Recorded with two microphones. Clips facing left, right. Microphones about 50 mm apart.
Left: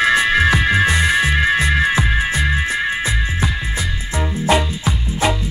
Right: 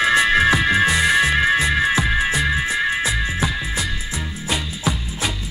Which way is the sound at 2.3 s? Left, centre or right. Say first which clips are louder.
Left 1 dB; left.